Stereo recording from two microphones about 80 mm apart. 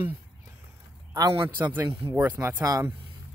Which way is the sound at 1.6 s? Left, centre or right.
Right.